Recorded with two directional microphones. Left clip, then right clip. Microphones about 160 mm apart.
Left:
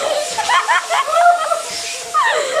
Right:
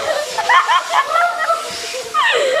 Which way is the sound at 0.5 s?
25° left (ahead or behind).